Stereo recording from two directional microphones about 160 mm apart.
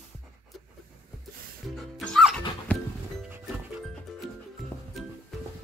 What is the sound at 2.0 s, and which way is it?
Music, centre (ahead or behind).